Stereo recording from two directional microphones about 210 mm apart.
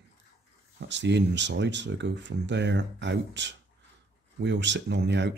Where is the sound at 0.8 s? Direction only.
55° right (ahead or behind).